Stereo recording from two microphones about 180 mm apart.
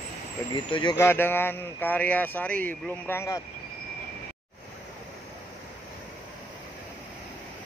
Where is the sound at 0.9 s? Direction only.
15° left (ahead or behind).